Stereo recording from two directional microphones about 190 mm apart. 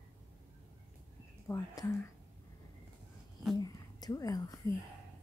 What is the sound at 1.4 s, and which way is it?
Speech, 20° left (ahead or behind).